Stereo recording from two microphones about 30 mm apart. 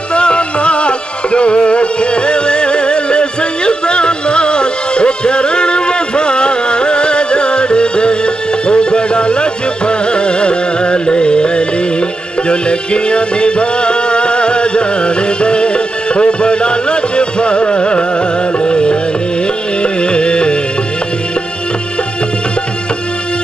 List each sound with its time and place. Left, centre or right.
0.1 s music: left